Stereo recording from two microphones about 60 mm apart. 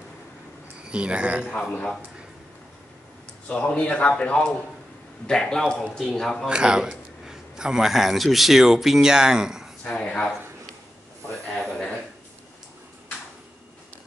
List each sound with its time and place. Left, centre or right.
0.8 s speech: centre
3.4 s a man's voice: left
6.4 s a man's voice: centre
9.8 s speech: centre
11.5 s a sound: centre